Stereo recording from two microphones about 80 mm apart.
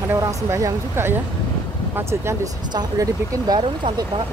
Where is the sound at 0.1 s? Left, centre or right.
Right.